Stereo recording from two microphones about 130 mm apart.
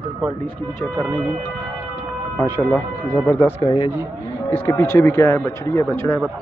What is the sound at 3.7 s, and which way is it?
Speech, 45° left (ahead or behind).